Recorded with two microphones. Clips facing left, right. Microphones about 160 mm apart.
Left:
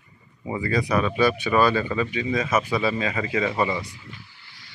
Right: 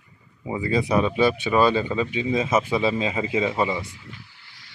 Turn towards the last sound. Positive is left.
turn(degrees=-15)  # may be behind; listen again after turning